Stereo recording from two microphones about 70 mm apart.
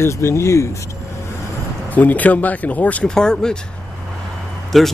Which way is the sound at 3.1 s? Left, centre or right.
Centre.